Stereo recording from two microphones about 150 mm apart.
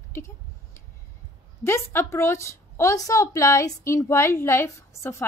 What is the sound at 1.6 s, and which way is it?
A woman's voice, 15° left (ahead or behind).